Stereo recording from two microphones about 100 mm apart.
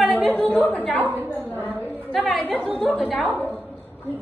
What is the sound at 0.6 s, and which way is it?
Speech, 15° left (ahead or behind).